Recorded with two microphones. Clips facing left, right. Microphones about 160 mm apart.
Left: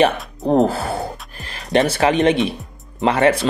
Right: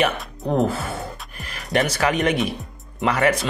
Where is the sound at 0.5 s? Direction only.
35° left (ahead or behind).